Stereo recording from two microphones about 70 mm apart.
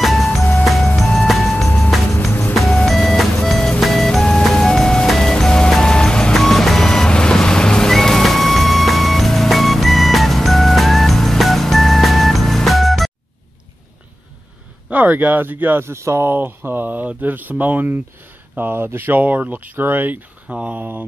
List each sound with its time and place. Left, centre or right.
0.0 s music: centre
2.5 s vehicle: centre
3.8 s music: centre
6.3 s vehicle: centre
14.9 s speech: right
16.3 s speech: right
20.4 s speech: centre